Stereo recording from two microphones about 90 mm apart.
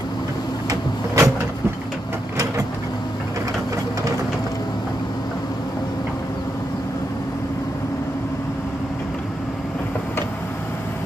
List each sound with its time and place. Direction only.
0.7 s cupboard open or close: 35° right (ahead or behind)